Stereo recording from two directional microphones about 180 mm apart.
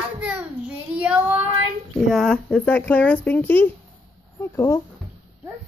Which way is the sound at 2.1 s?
5° left (ahead or behind).